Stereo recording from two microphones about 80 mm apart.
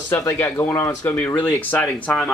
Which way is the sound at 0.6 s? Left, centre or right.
Left.